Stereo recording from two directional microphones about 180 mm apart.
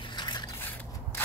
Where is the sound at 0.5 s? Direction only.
10° left (ahead or behind).